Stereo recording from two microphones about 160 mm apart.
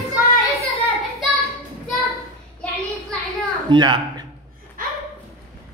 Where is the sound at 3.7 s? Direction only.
30° right (ahead or behind).